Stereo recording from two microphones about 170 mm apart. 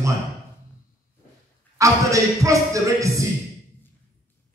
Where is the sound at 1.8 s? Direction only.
20° right (ahead or behind).